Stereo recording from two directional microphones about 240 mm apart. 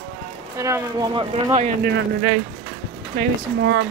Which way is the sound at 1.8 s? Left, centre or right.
Right.